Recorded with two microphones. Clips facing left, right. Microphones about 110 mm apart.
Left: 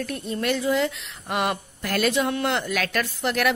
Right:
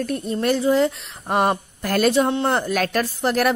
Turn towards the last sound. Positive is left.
turn(degrees=-40)  # may be behind; listen again after turning